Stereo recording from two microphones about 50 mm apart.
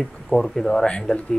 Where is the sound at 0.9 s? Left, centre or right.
Left.